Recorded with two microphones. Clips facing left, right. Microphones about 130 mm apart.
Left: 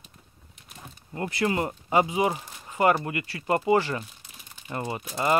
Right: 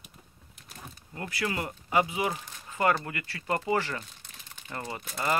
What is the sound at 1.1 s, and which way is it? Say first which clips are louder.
Speech: left 6 dB; 30° left (ahead or behind).